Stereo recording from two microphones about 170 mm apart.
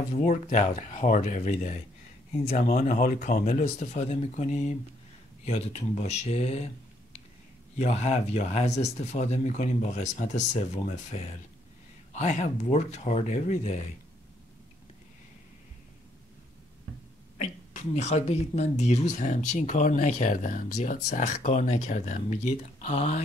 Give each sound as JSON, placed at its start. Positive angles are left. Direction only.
{"t": 0.1, "sound": "speech", "side_deg": 45}
{"t": 17.4, "sound": "speech", "side_deg": 45}